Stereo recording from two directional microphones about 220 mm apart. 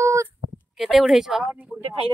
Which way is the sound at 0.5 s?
Centre (ahead or behind).